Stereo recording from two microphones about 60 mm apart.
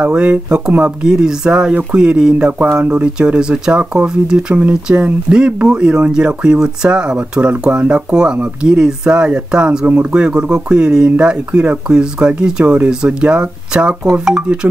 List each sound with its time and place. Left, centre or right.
0.0 s speech: right